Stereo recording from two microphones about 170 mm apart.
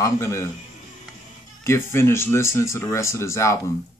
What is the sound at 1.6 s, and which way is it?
Speech, 15° left (ahead or behind).